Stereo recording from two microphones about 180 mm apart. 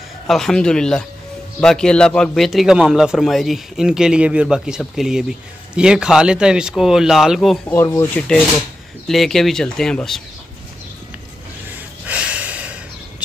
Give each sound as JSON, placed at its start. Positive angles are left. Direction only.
{"t": 0.3, "sound": "speech", "side_deg": 5}
{"t": 7.7, "sound": "speech", "side_deg": 20}
{"t": 8.2, "sound": "speech", "side_deg": 5}
{"t": 12.1, "sound": "a sound", "side_deg": -5}